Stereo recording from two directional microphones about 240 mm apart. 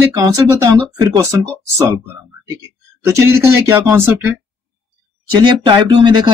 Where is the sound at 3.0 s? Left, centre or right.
Centre.